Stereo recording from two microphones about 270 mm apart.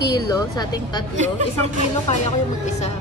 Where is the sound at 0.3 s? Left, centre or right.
Centre.